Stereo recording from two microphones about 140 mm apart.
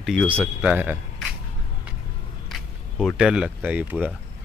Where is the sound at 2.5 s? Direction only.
Centre (ahead or behind).